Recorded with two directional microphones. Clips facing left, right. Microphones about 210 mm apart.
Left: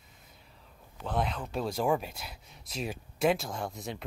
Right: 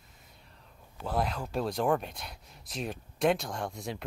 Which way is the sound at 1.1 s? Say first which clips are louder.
Right 1 dB; centre (ahead or behind).